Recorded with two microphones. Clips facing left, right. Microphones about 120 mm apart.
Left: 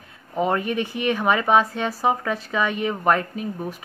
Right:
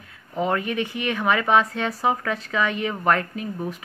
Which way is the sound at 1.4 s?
10° left (ahead or behind).